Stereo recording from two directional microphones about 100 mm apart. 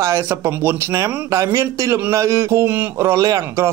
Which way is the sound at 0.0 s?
25° right (ahead or behind).